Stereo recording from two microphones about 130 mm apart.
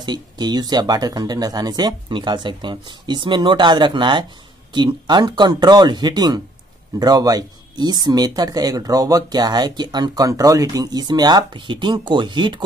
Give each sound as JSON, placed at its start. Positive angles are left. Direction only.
{"t": 0.0, "sound": "speech", "side_deg": -35}